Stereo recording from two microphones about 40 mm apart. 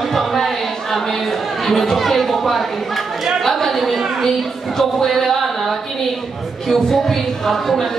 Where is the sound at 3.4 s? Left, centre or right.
Centre.